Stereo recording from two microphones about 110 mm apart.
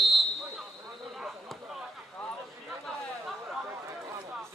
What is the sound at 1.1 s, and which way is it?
Chop, centre (ahead or behind).